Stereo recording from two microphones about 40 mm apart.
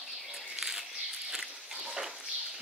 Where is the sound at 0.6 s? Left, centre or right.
Centre.